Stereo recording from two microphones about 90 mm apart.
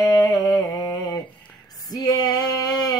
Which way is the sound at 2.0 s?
45° left (ahead or behind).